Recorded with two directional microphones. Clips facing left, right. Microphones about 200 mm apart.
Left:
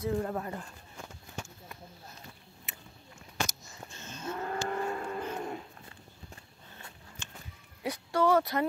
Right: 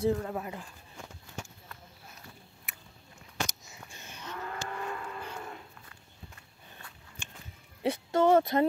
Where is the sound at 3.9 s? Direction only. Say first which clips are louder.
Left 6 dB; 15° right (ahead or behind).